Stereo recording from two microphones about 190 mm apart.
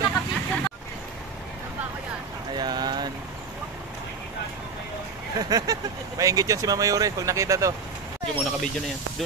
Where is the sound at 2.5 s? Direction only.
20° right (ahead or behind).